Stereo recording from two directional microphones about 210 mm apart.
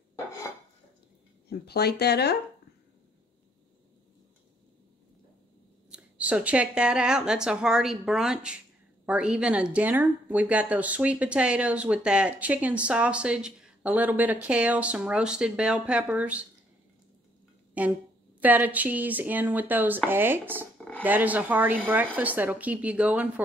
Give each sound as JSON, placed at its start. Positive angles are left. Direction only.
{"t": 1.5, "sound": "speech", "side_deg": 50}
{"t": 5.9, "sound": "a woman's voice", "side_deg": -5}
{"t": 17.8, "sound": "speech", "side_deg": -5}
{"t": 20.7, "sound": "a sound", "side_deg": 5}
{"t": 21.0, "sound": "speech", "side_deg": -10}